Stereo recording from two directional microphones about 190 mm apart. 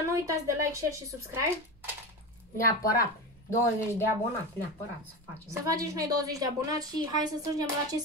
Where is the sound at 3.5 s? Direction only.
15° left (ahead or behind).